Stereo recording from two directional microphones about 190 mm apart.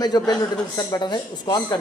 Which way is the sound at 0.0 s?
20° left (ahead or behind).